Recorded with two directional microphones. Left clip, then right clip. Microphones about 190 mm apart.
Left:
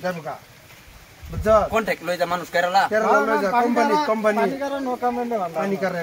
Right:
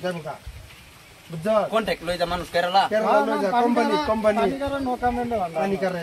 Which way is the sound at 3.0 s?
15° left (ahead or behind).